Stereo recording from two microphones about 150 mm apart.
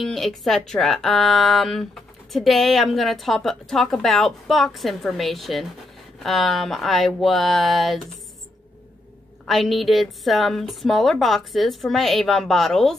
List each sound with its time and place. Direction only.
0.0 s a woman's voice: centre (ahead or behind)
9.5 s a woman's voice: centre (ahead or behind)